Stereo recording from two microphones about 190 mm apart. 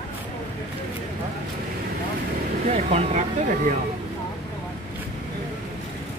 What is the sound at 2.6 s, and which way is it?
Speech, 35° right (ahead or behind).